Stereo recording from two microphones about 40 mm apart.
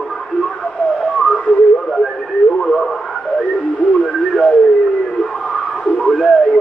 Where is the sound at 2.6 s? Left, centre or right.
Centre.